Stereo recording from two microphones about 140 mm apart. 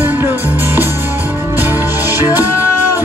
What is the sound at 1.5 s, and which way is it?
Music, 15° right (ahead or behind).